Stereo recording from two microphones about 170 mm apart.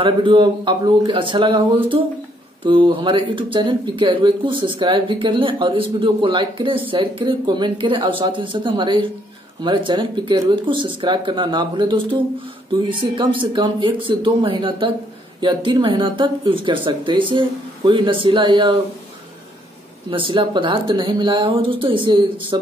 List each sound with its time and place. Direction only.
0.0 s speech: 30° right (ahead or behind)
20.1 s speech: 30° right (ahead or behind)